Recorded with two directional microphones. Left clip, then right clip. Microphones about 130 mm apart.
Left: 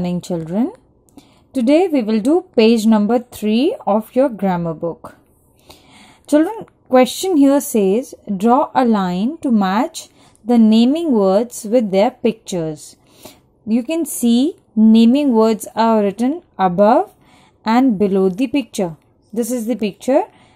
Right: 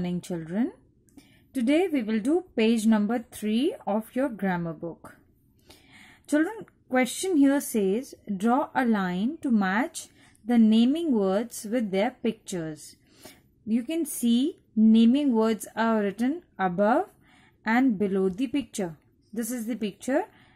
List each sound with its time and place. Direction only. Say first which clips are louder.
0.0 s a woman's voice: left 11 dB; 20° left (ahead or behind)